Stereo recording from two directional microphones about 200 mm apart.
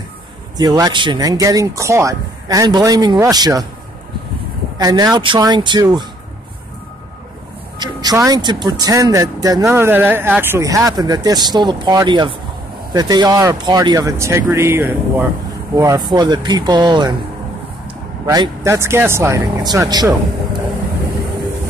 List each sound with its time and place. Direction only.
0.6 s speech: 20° right (ahead or behind)
4.7 s speech: 20° right (ahead or behind)
7.8 s speech: 20° right (ahead or behind)
18.2 s speech: 20° right (ahead or behind)